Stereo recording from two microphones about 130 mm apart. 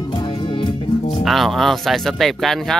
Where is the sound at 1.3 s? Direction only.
Centre (ahead or behind).